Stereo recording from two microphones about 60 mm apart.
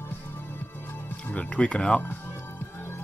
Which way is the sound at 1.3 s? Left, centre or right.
Left.